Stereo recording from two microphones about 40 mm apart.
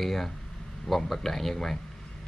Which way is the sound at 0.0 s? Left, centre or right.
Centre.